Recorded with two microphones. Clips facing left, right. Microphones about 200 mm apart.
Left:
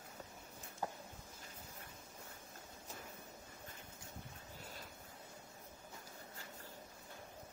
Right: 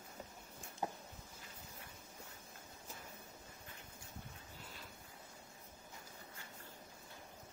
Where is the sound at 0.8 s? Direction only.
15° right (ahead or behind).